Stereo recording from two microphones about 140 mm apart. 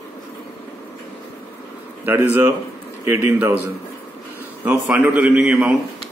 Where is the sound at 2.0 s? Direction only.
15° right (ahead or behind).